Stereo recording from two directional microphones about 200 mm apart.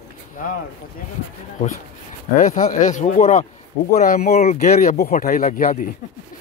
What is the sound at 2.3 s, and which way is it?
Speech, 40° left (ahead or behind).